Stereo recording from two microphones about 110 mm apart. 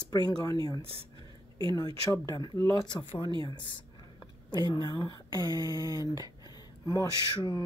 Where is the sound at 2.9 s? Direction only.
50° left (ahead or behind).